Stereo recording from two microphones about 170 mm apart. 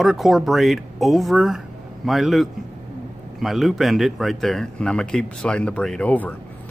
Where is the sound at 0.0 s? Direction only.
Centre (ahead or behind).